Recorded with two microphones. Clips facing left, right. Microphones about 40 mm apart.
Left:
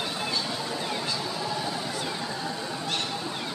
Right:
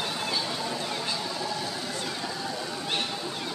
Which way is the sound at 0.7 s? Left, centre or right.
Centre.